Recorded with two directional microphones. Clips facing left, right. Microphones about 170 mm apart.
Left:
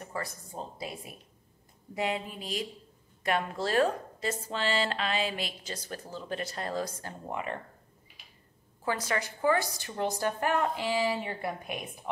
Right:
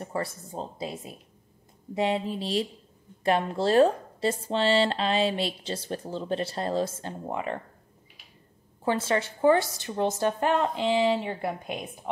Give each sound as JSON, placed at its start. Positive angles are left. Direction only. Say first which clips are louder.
{"t": 0.0, "sound": "a woman's voice", "louder": "right 6 dB", "side_deg": -30}
{"t": 8.8, "sound": "a woman's voice", "louder": "right 6 dB", "side_deg": -25}